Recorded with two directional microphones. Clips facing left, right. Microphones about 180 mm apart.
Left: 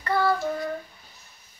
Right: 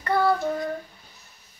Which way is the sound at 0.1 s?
25° right (ahead or behind).